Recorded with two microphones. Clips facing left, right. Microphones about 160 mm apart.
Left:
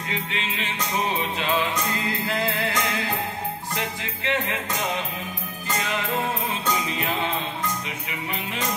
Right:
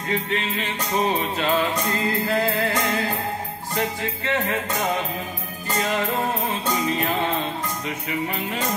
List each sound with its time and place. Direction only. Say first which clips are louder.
0.1 s music: right 6 dB; 45° right (ahead or behind)